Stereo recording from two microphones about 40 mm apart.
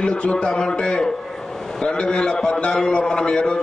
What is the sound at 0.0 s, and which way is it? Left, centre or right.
A man's voice, left.